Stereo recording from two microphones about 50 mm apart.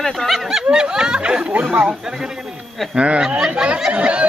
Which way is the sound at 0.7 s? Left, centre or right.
Centre.